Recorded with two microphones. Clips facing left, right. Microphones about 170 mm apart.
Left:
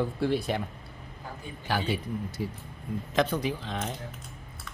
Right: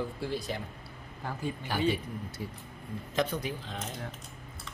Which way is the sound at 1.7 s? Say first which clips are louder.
Left 3 dB; 90° left.